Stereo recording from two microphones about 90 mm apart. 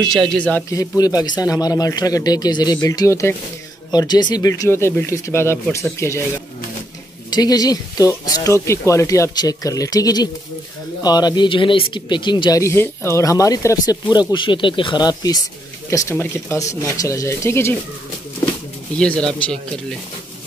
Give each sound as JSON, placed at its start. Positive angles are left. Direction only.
{"t": 0.3, "sound": "speech", "side_deg": 15}
{"t": 0.7, "sound": "speech", "side_deg": 40}
{"t": 3.1, "sound": "speech", "side_deg": 35}
{"t": 3.9, "sound": "speech", "side_deg": 50}
{"t": 4.4, "sound": "speech", "side_deg": 40}
{"t": 4.6, "sound": "speech", "side_deg": 30}
{"t": 7.2, "sound": "speech", "side_deg": 50}
{"t": 8.3, "sound": "speech", "side_deg": 35}
{"t": 11.4, "sound": "speech", "side_deg": 70}
{"t": 12.4, "sound": "speech", "side_deg": 35}
{"t": 12.7, "sound": "speech", "side_deg": 25}
{"t": 14.0, "sound": "speech", "side_deg": 55}
{"t": 15.9, "sound": "speech", "side_deg": 30}
{"t": 18.9, "sound": "speech", "side_deg": 10}